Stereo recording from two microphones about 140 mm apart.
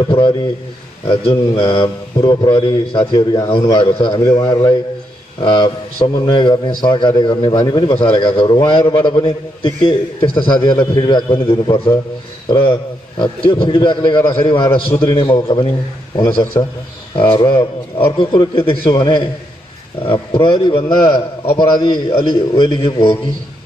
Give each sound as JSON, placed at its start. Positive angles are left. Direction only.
{"t": 0.0, "sound": "a man's voice", "side_deg": 35}
{"t": 4.3, "sound": "a man's voice", "side_deg": 20}
{"t": 17.4, "sound": "a man's voice", "side_deg": 40}